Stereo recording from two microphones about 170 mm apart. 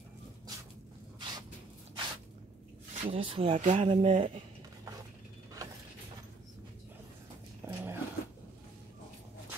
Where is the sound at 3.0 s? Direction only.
35° right (ahead or behind).